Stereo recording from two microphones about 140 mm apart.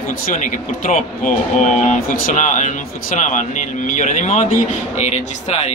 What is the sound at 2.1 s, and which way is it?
Speech, 75° left (ahead or behind).